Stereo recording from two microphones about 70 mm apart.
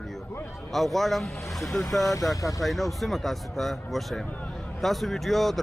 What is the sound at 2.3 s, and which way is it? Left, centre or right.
Speech, left.